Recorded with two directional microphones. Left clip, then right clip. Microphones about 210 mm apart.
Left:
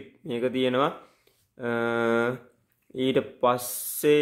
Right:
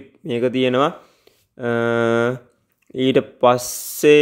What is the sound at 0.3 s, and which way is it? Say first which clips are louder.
Speech: right 7 dB; 30° right (ahead or behind).